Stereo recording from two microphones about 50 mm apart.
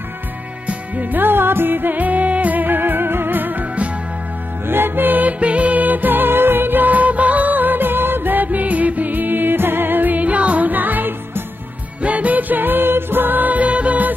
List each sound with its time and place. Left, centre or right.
0.7 s music: right
1.2 s music: right
4.6 s music: right
12.0 s music: right